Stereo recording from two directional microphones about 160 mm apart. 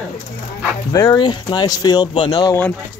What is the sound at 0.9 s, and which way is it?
Speech, 25° left (ahead or behind).